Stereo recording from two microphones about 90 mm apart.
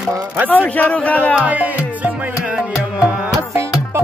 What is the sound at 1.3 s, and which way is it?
Music, 15° right (ahead or behind).